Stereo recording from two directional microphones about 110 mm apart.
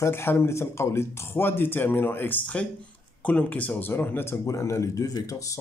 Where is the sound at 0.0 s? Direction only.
20° left (ahead or behind).